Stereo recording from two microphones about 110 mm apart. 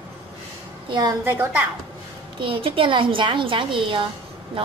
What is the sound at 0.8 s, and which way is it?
Speech, 40° right (ahead or behind).